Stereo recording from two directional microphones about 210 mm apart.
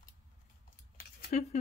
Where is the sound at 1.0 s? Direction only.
45° left (ahead or behind).